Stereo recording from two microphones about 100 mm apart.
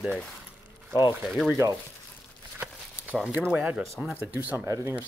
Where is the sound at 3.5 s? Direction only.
15° right (ahead or behind).